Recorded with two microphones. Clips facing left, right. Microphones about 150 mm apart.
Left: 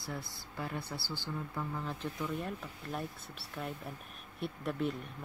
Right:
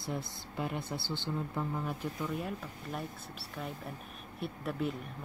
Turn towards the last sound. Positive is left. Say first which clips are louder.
# even
turn(degrees=0)  # may be behind; listen again after turning